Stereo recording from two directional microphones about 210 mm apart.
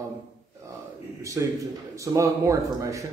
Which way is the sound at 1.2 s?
15° right (ahead or behind).